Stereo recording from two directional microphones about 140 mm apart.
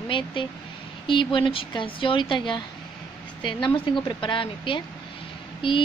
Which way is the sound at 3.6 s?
35° left (ahead or behind).